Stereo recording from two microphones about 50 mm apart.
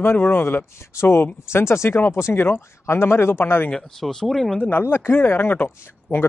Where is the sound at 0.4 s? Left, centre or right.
Left.